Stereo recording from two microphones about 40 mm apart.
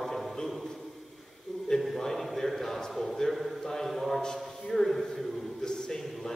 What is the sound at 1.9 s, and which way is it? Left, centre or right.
A man's voice, centre.